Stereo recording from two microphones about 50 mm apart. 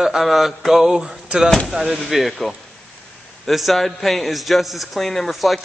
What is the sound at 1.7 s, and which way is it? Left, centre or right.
A man's voice, centre.